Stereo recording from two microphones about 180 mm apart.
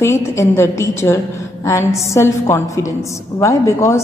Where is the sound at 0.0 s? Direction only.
15° left (ahead or behind).